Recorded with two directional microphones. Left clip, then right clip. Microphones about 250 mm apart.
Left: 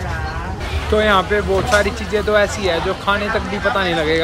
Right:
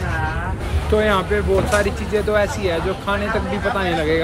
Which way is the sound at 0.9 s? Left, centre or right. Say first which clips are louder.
Left 3 dB; centre.